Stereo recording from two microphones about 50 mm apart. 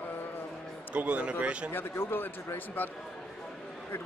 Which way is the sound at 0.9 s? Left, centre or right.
Right.